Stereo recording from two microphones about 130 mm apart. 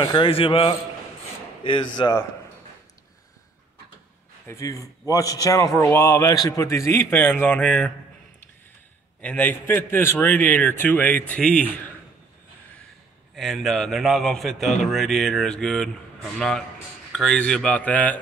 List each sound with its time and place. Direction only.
0.0 s a man's voice: 40° left (ahead or behind)
4.5 s a man's voice: 25° left (ahead or behind)
9.2 s a man's voice: 10° left (ahead or behind)
13.4 s a man's voice: centre (ahead or behind)